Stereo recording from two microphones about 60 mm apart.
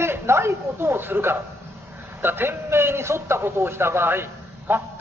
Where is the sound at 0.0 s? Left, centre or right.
Right.